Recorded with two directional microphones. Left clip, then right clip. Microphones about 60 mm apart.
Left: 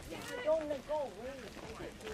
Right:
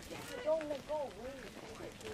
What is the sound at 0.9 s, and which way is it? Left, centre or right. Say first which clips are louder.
Speech: left 2 dB; left.